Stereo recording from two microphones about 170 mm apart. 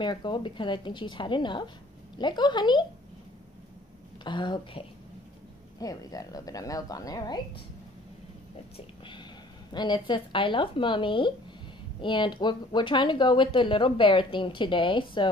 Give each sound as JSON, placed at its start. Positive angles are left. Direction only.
{"t": 0.0, "sound": "speech", "side_deg": 25}
{"t": 4.2, "sound": "speech", "side_deg": 25}
{"t": 8.7, "sound": "speech", "side_deg": 30}